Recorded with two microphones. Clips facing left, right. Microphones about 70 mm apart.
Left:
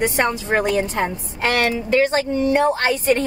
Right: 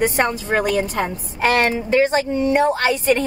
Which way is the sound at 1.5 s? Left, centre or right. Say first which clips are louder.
Right 1 dB; right.